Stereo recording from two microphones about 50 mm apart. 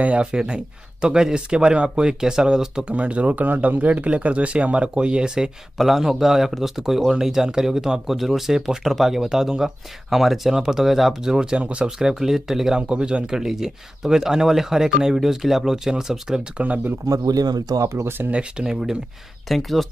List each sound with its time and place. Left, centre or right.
0.0 s speech: right
2.9 s speech: right
5.8 s speech: centre
11.3 s speech: right
12.1 s speech: centre
16.5 s speech: right
18.0 s speech: right
18.3 s speech: right
18.7 s speech: centre
19.4 s speech: centre